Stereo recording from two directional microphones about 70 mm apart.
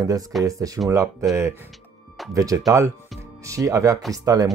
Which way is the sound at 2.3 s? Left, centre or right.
Right.